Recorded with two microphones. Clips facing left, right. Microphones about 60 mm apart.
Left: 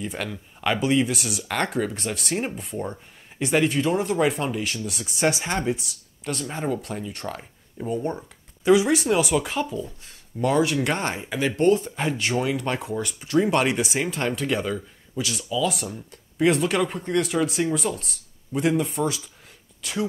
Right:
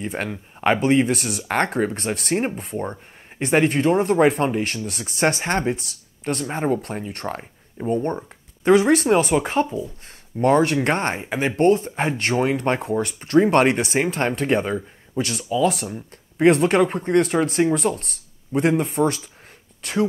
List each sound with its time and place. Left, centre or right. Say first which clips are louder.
0.0 s speech: right 3 dB; right
4.8 s speech: even; right